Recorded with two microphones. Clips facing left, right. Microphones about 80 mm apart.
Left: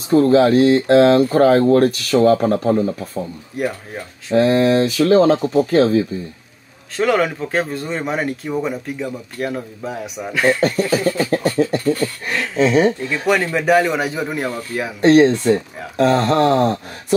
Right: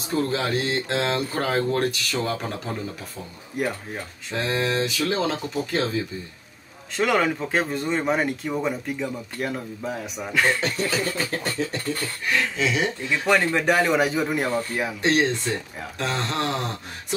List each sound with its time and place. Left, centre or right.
0.1 s speech: left
3.5 s speech: centre
4.3 s speech: left
7.0 s speech: centre
10.6 s speech: left
13.2 s speech: centre
15.0 s speech: left